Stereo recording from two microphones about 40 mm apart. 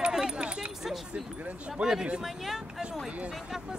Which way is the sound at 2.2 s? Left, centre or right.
Centre.